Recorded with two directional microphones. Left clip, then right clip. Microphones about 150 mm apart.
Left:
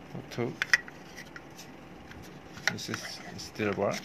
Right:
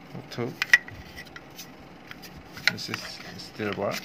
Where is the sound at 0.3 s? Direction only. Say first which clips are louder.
Right 6 dB; centre (ahead or behind).